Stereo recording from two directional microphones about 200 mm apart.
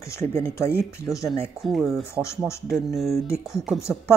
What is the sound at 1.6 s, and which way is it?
Speech, centre (ahead or behind).